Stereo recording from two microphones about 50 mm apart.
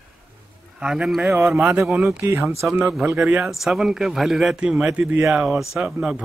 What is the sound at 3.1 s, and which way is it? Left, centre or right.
Speech, right.